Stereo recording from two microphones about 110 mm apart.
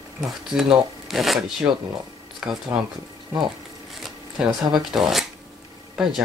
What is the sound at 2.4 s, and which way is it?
Speech, 10° right (ahead or behind).